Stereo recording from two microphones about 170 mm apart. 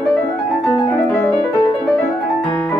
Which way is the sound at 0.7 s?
15° left (ahead or behind).